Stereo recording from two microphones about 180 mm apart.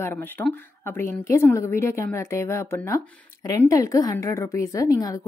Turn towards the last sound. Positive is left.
turn(degrees=20)  # may be behind; listen again after turning